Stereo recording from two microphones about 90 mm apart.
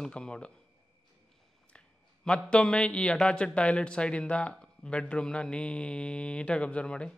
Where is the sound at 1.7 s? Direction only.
10° left (ahead or behind).